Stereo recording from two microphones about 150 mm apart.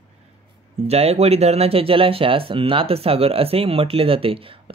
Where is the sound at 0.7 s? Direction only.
45° right (ahead or behind).